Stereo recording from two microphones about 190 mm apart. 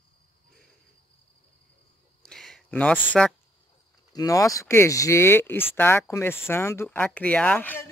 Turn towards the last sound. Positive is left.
turn(degrees=10)  # may be behind; listen again after turning